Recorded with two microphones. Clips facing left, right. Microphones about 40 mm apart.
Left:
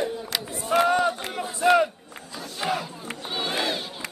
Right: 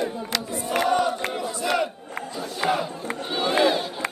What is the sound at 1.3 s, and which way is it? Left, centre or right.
Battle cry, centre.